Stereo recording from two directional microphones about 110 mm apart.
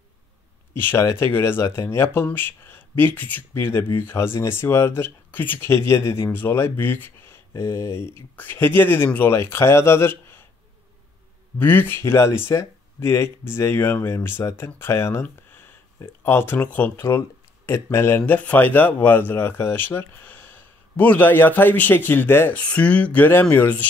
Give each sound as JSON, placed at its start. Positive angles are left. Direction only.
{"t": 0.7, "sound": "speech", "side_deg": 25}
{"t": 11.5, "sound": "speech", "side_deg": 20}
{"t": 15.2, "sound": "a sound", "side_deg": 20}
{"t": 16.0, "sound": "speech", "side_deg": 20}